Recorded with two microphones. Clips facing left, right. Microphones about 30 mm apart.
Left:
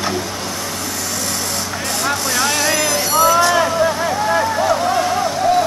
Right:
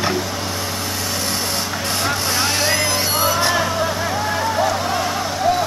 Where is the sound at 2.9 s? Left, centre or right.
Right.